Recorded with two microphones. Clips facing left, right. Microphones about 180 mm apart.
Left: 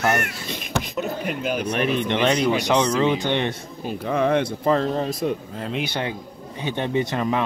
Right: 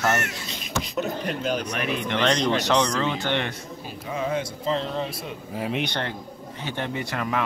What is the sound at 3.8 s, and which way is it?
Speech, 65° left (ahead or behind).